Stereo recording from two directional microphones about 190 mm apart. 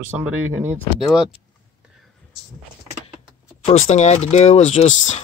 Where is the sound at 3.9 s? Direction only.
35° left (ahead or behind).